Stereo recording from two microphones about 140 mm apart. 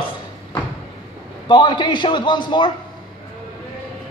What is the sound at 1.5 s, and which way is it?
A man's voice, 35° left (ahead or behind).